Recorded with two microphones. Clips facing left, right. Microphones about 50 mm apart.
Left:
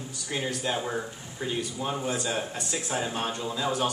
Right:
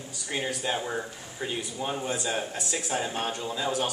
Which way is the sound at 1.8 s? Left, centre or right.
Centre.